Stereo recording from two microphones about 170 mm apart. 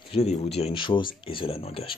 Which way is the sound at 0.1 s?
35° left (ahead or behind).